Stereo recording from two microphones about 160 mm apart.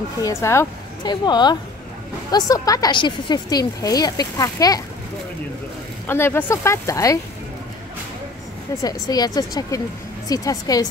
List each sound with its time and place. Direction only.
0.2 s a woman's voice: 15° left (ahead or behind)
6.0 s speech: 15° left (ahead or behind)
8.8 s a woman's voice: 25° left (ahead or behind)